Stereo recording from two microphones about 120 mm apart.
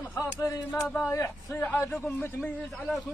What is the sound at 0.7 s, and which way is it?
A man's voice, 10° left (ahead or behind).